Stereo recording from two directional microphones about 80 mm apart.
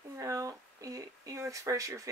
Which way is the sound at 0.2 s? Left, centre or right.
Right.